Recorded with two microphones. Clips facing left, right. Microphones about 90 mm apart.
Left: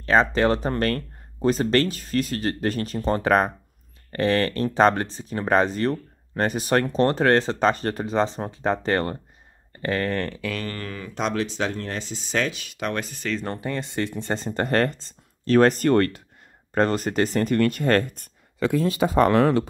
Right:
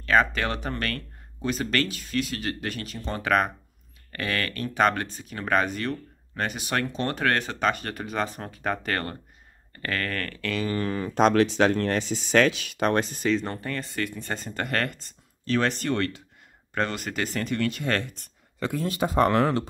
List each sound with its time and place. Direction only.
0.0 s speech: 30° left (ahead or behind)
10.7 s speech: 20° right (ahead or behind)
11.0 s speech: 45° right (ahead or behind); by 12.7 s 75° right (ahead or behind)
12.7 s speech: 40° right (ahead or behind)
13.2 s speech: centre (ahead or behind)
13.5 s speech: 20° left (ahead or behind)
15.4 s speech: 45° left (ahead or behind)
16.7 s speech: 35° left (ahead or behind)